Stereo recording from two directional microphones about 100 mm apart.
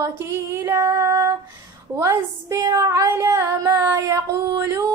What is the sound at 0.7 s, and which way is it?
Female singing, 25° right (ahead or behind).